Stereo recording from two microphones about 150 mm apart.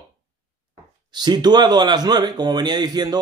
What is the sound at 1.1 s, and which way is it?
A man's voice, 30° right (ahead or behind).